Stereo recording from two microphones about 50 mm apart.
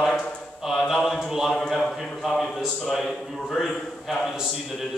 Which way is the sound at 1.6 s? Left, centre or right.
Centre.